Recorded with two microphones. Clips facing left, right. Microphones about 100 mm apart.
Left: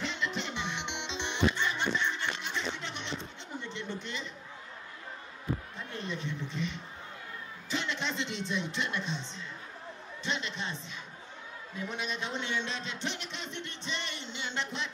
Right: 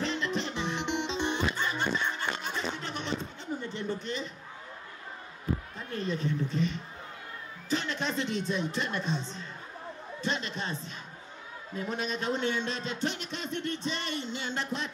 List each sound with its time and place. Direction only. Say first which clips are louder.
0.0 s music: right 4 dB; 40° right (ahead or behind)
5.8 s a sound: right 5 dB; 40° right (ahead or behind)
11.7 s speech: right 4 dB; 40° right (ahead or behind)